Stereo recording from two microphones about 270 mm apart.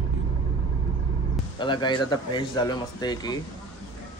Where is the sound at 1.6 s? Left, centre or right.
Centre.